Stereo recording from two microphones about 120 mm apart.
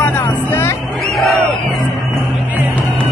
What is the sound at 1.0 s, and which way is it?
Speech, centre (ahead or behind).